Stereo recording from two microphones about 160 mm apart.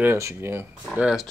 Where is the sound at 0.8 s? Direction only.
5° right (ahead or behind).